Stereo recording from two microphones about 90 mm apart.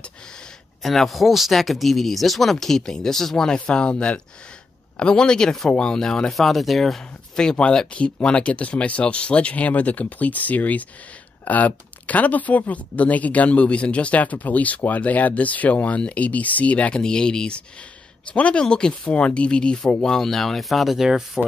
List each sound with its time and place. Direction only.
0.0 s speech: 10° left (ahead or behind)